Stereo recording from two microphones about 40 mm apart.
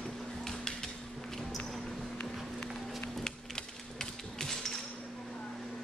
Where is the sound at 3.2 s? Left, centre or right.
Centre.